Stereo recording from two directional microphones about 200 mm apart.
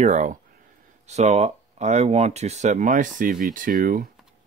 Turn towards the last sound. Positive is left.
turn(degrees=-45)  # may be behind; listen again after turning